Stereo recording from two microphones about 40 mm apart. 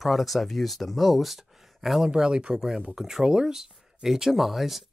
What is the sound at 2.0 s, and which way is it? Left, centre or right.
Speech, right.